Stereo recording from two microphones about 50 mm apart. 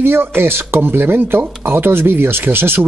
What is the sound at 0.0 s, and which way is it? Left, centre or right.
Speech, right.